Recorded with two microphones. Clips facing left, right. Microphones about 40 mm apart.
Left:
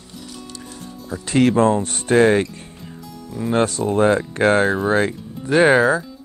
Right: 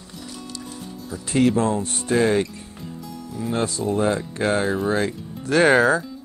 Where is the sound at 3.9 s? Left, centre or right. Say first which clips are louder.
Left 5 dB; left.